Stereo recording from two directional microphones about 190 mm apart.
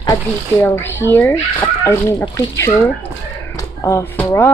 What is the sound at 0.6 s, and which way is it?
A child's voice, 10° left (ahead or behind).